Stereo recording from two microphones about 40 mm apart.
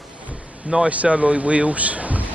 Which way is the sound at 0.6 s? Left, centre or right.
Right.